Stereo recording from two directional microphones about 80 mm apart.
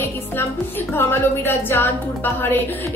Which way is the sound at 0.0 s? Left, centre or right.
Left.